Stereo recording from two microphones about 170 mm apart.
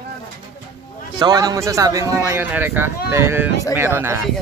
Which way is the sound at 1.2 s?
25° right (ahead or behind).